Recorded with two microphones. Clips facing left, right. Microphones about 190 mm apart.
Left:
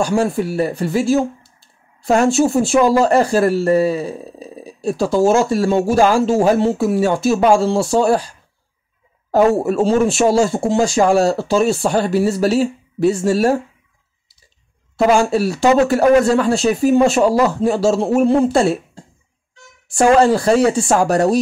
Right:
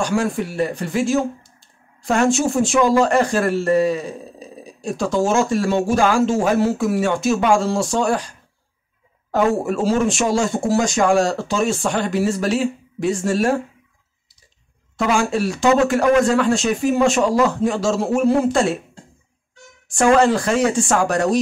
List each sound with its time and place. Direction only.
0.1 s speech: 35° left (ahead or behind)
9.3 s speech: 35° left (ahead or behind)
15.0 s speech: 40° left (ahead or behind)
19.9 s speech: 35° left (ahead or behind)